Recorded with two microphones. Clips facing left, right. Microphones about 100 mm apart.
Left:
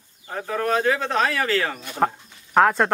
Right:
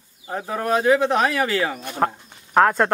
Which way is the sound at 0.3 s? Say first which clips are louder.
Right 1 dB; 15° right (ahead or behind).